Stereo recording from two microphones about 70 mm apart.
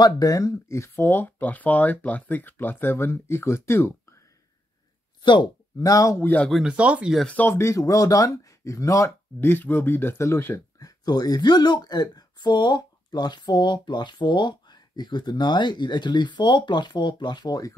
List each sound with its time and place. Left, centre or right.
0.0 s speech: left
5.2 s speech: left
5.9 s speech: left
6.2 s speech: left
6.6 s speech: centre
7.4 s speech: left
9.4 s speech: left
10.8 s speech: left